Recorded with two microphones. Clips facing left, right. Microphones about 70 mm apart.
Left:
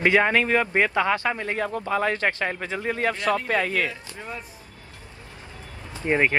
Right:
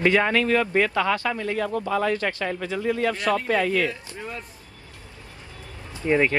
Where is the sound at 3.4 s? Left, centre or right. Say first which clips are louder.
Right 2 dB; left.